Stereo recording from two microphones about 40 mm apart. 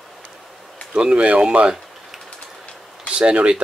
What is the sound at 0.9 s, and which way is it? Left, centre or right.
Speech, right.